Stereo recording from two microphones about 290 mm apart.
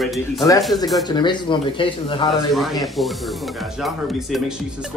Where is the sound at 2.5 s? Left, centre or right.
Centre.